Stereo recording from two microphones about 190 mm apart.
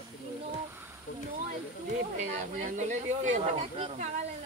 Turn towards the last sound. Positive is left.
turn(degrees=-35)  # may be behind; listen again after turning